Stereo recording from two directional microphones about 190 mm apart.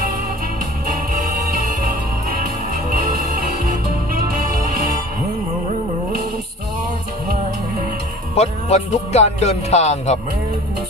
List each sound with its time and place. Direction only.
4.1 s music: 45° right (ahead or behind)
8.4 s speech: 35° left (ahead or behind)